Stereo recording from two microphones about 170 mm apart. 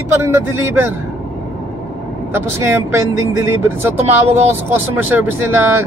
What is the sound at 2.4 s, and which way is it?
Speech, 15° right (ahead or behind).